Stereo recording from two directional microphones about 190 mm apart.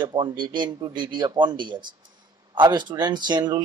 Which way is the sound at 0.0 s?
25° right (ahead or behind).